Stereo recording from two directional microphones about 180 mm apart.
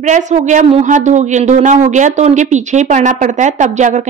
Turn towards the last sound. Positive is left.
turn(degrees=-45)  # may be behind; listen again after turning